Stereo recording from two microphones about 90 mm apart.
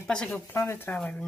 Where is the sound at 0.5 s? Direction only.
25° left (ahead or behind).